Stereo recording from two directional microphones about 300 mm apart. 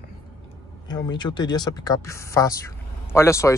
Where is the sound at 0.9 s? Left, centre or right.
Centre.